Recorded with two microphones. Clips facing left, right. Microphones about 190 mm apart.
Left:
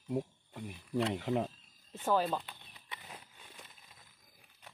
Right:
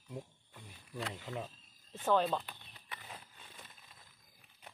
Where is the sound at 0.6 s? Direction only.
65° left (ahead or behind).